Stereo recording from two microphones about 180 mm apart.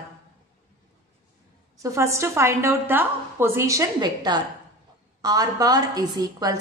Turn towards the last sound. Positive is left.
turn(degrees=-20)  # may be behind; listen again after turning